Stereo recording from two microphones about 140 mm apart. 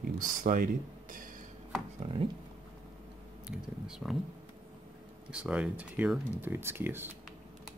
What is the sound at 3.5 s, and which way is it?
Speech, 5° right (ahead or behind).